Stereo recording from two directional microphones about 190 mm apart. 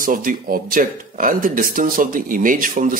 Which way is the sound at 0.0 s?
45° right (ahead or behind).